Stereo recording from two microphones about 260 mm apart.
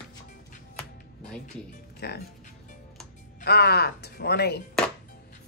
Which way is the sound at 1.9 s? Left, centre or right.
Left.